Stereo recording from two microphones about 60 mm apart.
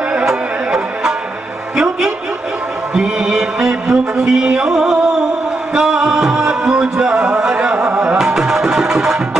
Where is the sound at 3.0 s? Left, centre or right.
Centre.